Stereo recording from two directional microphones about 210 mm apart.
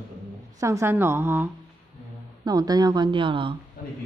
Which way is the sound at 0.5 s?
15° right (ahead or behind).